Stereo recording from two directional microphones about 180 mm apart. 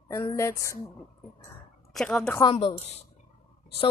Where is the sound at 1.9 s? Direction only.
5° left (ahead or behind).